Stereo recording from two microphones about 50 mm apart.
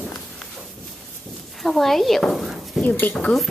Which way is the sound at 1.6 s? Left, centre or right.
Centre.